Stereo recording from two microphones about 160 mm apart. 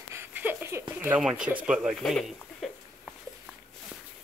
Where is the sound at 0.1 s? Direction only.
10° right (ahead or behind).